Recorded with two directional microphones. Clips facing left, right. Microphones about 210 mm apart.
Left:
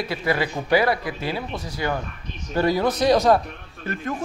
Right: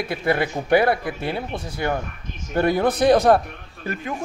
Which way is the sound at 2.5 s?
55° right (ahead or behind).